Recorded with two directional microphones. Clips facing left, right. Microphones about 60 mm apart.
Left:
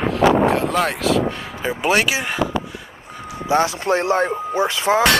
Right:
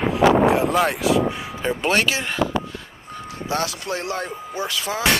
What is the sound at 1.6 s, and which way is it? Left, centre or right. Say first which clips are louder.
Speech: left 2 dB; centre.